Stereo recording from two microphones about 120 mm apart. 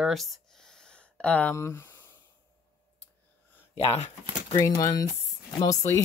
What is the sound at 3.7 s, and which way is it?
Speech, 55° left (ahead or behind).